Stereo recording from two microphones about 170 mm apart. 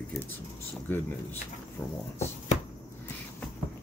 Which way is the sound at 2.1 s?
45° left (ahead or behind).